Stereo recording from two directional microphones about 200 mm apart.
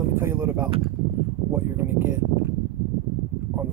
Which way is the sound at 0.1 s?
15° right (ahead or behind).